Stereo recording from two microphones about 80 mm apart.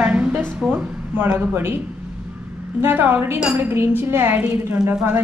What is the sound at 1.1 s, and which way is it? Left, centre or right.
Speech, right.